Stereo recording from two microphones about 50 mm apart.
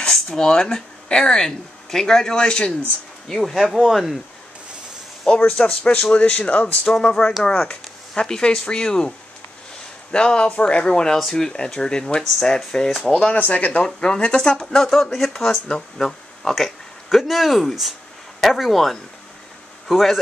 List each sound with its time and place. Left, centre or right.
0.1 s speech: centre
3.3 s speech: centre
5.4 s speech: left
7.0 s speech: centre
10.1 s speech: centre
13.4 s speech: left
13.8 s speech: centre